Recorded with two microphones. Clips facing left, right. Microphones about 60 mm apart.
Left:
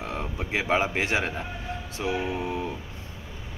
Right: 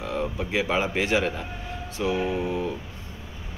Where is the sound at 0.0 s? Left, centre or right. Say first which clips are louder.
Right 4 dB; left.